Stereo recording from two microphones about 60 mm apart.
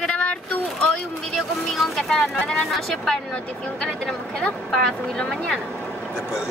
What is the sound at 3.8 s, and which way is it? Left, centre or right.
A woman's voice, centre.